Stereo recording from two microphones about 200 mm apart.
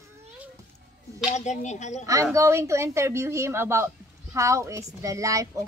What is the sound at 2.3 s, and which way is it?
A woman's voice, 15° right (ahead or behind).